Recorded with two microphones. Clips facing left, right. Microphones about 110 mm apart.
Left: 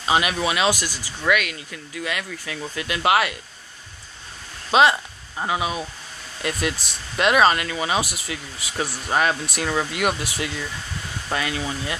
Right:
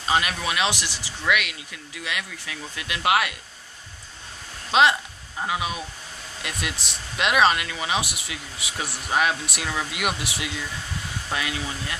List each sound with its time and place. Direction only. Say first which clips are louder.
0.0 s speech: left 3 dB; 10° left (ahead or behind)
0.7 s speech: left 3 dB; 75° right (ahead or behind)
1.2 s speech: left 3 dB; 5° right (ahead or behind)
4.6 s speech: left 2 dB; centre (ahead or behind)
7.2 s speech: left 3 dB; centre (ahead or behind)